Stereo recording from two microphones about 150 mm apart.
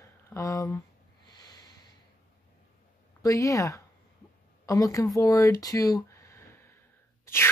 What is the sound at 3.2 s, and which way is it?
A woman's voice, 20° left (ahead or behind).